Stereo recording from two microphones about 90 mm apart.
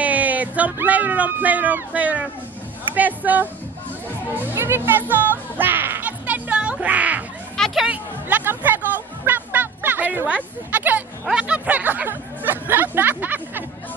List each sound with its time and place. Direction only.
0.0 s speech: 15° right (ahead or behind)
4.6 s speech: 25° right (ahead or behind)
5.6 s music: 25° right (ahead or behind)
7.5 s music: 5° left (ahead or behind)
7.8 s chatter: 15° right (ahead or behind)
11.2 s speech: 10° right (ahead or behind)